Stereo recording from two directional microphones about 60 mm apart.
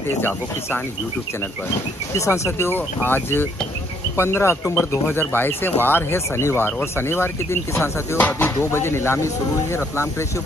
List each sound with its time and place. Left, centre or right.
2.1 s speech: left
2.7 s speech: left
8.2 s speech: left
8.5 s speech: left